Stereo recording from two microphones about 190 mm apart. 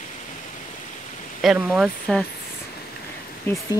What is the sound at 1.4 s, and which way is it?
Speech, 5° right (ahead or behind).